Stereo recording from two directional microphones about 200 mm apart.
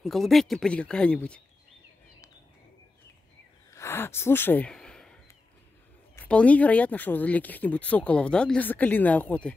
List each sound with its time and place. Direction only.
0.0 s speech: centre (ahead or behind)
3.7 s gasp: 10° left (ahead or behind)
6.1 s speech: 5° left (ahead or behind)